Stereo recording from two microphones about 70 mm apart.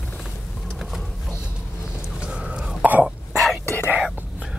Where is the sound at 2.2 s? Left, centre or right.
Centre.